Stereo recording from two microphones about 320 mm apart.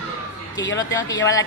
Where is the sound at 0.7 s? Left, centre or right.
Centre.